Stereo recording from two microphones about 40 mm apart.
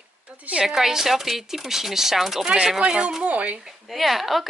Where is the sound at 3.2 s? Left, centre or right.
Right.